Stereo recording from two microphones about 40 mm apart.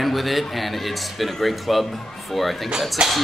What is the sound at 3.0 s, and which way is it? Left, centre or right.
Music, right.